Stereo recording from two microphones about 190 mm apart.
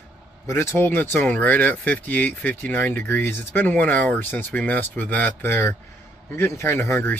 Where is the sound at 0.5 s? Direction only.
15° left (ahead or behind).